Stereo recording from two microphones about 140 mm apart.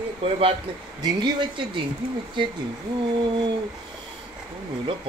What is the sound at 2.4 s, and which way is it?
Speech, 35° right (ahead or behind).